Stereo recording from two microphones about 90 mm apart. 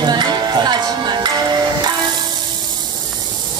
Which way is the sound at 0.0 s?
50° right (ahead or behind).